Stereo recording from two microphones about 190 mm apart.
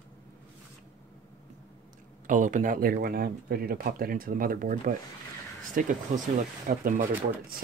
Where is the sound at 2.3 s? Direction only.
40° right (ahead or behind).